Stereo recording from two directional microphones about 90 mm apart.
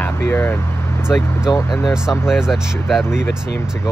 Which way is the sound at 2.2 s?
5° right (ahead or behind).